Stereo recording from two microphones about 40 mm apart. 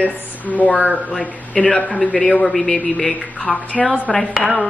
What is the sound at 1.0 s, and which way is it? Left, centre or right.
Speech, centre.